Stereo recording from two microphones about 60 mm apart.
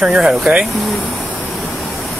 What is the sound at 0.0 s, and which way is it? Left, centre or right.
Speech, centre.